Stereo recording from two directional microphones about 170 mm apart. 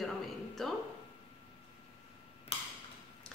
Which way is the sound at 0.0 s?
Centre (ahead or behind).